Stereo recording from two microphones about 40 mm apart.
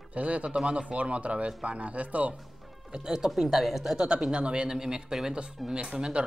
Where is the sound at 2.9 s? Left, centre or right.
Centre.